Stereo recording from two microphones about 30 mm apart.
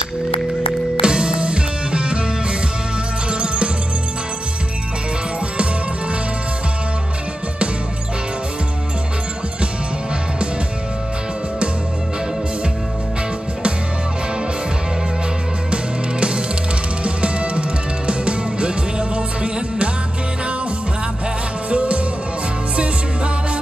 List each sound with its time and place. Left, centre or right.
1.0 s music: right
3.3 s music: right
15.7 s music: right
21.6 s music: right